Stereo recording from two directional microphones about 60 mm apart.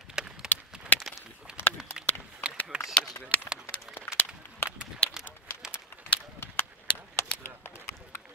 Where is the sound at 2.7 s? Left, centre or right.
Centre.